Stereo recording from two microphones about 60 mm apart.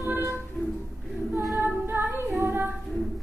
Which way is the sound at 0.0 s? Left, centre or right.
Right.